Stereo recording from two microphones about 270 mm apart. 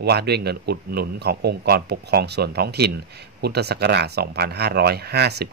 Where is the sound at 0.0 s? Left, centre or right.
Right.